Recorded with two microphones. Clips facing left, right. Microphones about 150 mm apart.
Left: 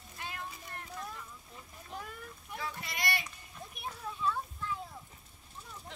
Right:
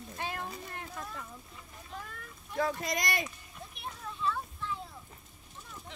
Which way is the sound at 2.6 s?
45° right (ahead or behind).